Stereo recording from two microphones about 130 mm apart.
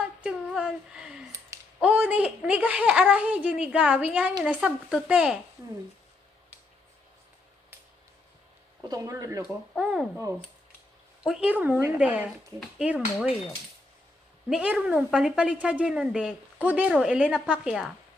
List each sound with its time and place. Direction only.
0.0 s a sound: 5° right (ahead or behind)
1.8 s a woman's voice: 10° right (ahead or behind)
8.8 s speech: 25° right (ahead or behind)
9.8 s speech: 5° right (ahead or behind)
11.2 s a woman's voice: 5° right (ahead or behind)
14.5 s a woman's voice: 5° right (ahead or behind)